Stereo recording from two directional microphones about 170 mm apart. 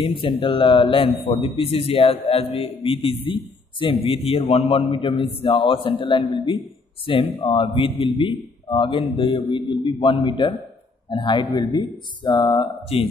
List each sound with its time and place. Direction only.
0.0 s a man's voice: 30° left (ahead or behind)